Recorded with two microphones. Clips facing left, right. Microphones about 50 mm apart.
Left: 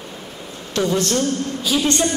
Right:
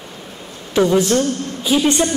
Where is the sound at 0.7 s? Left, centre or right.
Centre.